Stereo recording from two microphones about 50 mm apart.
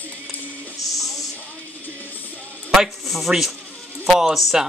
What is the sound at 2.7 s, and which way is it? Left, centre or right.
Speech, centre.